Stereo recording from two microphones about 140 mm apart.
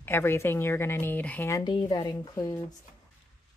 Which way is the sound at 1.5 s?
30° left (ahead or behind).